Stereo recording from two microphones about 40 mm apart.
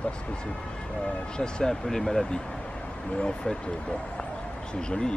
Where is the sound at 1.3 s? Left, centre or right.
Left.